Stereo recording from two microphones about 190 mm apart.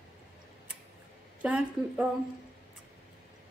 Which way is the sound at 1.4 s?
5° right (ahead or behind).